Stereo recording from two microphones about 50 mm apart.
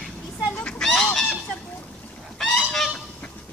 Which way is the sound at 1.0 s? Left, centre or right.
Centre.